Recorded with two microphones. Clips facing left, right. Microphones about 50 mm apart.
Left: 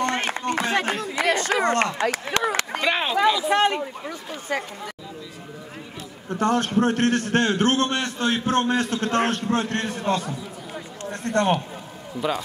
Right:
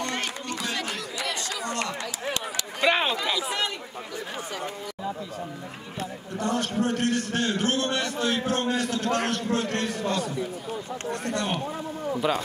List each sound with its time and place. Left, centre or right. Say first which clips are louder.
0.0 s run: left 6 dB; left
2.8 s a sound: right 3 dB; centre
3.5 s a man's voice: left 10 dB; left
6.3 s a man's voice: left 6 dB; left
12.2 s speech: left 1 dB; centre